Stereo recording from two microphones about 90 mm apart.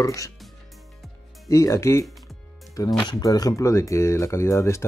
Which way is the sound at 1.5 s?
35° left (ahead or behind).